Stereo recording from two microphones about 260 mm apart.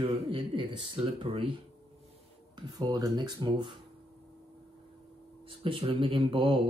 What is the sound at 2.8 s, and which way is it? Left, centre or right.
Speech, centre.